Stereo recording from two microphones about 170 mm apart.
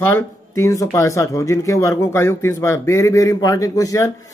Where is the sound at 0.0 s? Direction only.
15° left (ahead or behind).